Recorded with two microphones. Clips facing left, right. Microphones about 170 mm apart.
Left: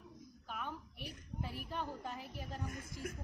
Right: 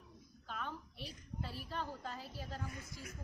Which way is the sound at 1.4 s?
15° left (ahead or behind).